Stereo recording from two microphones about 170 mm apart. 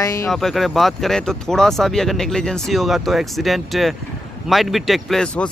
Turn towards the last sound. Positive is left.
turn(degrees=5)  # may be behind; listen again after turning